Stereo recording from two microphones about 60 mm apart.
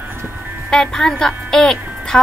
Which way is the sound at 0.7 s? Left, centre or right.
Centre.